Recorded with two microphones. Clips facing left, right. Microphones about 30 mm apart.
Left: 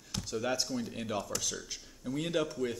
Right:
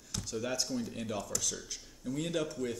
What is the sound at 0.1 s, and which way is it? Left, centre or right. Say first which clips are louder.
Speech: left 3 dB; centre.